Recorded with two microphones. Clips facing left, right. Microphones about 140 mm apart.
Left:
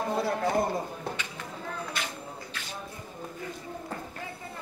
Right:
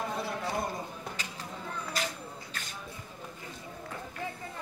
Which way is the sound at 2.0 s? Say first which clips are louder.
Right 5 dB; 40° right (ahead or behind).